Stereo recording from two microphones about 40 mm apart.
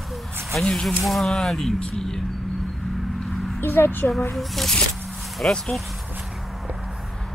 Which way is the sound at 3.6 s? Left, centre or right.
Left.